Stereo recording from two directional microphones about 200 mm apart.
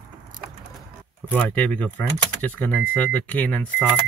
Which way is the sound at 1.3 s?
10° left (ahead or behind).